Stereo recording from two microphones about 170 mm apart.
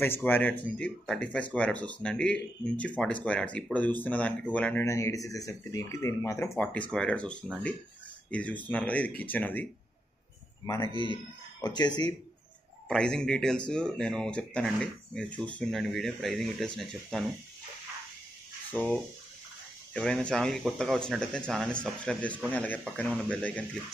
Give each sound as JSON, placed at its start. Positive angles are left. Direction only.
{"t": 0.0, "sound": "speech", "side_deg": 10}
{"t": 11.6, "sound": "speech", "side_deg": 25}
{"t": 12.8, "sound": "speech", "side_deg": 5}
{"t": 18.7, "sound": "fowl", "side_deg": 10}
{"t": 19.9, "sound": "speech", "side_deg": 5}